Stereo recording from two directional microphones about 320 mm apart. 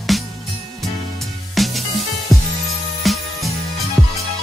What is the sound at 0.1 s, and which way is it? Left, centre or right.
Music, centre.